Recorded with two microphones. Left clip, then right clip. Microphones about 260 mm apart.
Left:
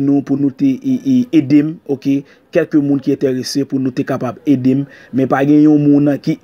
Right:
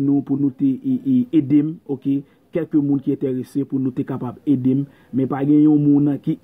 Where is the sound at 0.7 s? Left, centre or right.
Left.